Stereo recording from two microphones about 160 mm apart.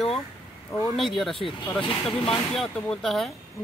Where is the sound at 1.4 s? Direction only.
35° left (ahead or behind).